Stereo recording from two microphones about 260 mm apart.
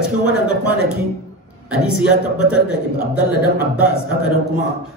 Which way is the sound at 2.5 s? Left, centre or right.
Centre.